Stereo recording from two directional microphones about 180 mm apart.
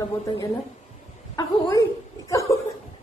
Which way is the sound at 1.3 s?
20° left (ahead or behind).